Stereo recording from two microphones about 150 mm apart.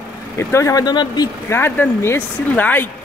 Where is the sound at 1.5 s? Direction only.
15° left (ahead or behind).